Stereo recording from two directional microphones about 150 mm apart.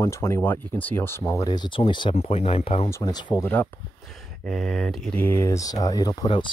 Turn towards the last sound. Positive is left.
turn(degrees=30)  # may be behind; listen again after turning